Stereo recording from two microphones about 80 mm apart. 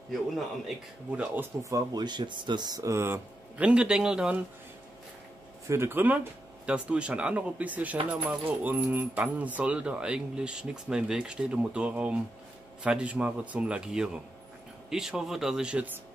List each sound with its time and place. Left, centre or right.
1.1 s speech: centre
1.4 s speech: right
1.9 s speech: right
2.8 s speech: right
3.5 s speech: centre
5.7 s speech: right
6.6 s speech: centre